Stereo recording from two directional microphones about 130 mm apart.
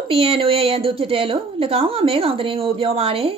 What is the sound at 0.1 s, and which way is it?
A woman's voice, 45° right (ahead or behind).